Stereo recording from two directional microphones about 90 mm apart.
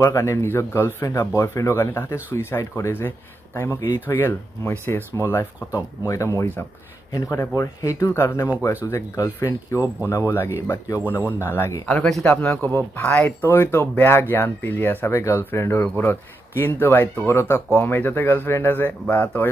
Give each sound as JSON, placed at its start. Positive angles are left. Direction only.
{"t": 0.0, "sound": "speech", "side_deg": 35}
{"t": 11.9, "sound": "speech", "side_deg": 10}
{"t": 12.4, "sound": "speech", "side_deg": 20}